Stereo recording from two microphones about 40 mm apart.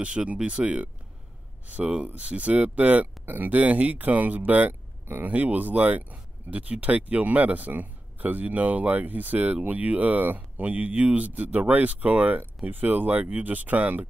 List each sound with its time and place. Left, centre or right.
0.0 s speech: right
2.1 s speech: right